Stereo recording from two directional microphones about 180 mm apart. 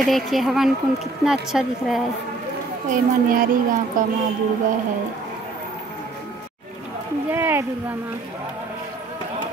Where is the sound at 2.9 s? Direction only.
50° right (ahead or behind).